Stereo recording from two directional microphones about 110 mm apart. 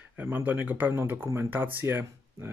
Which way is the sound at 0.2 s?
15° right (ahead or behind).